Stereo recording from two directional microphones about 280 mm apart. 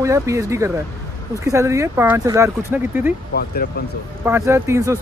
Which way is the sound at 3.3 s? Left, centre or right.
Left.